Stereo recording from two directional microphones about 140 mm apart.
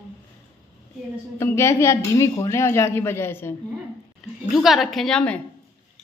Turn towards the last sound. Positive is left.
turn(degrees=5)  # may be behind; listen again after turning